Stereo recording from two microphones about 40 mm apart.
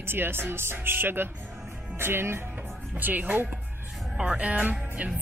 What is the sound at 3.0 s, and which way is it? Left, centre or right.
Speech, right.